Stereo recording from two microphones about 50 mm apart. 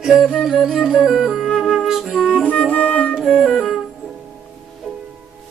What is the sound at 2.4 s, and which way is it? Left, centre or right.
Music, left.